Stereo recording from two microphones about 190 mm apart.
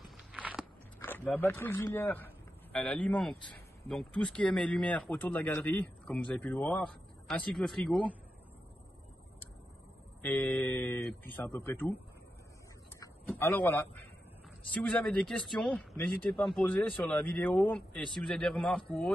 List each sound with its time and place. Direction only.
0.0 s walk: 5° right (ahead or behind)
0.9 s speech: 10° left (ahead or behind)
10.2 s speech: 5° left (ahead or behind)
13.0 s speech: 10° left (ahead or behind)